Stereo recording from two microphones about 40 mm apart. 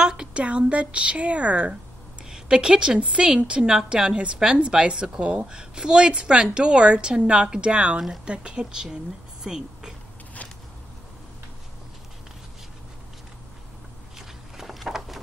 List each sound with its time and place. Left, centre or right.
0.0 s a woman's voice: right
2.2 s a woman's voice: centre
14.1 s vehicle: centre
14.9 s a sound: centre